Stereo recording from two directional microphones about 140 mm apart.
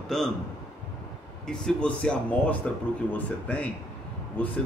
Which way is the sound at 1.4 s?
5° left (ahead or behind).